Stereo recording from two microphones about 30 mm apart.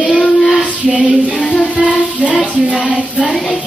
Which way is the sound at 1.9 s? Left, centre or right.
Right.